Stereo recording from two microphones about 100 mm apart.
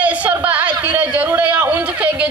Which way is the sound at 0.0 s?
15° right (ahead or behind).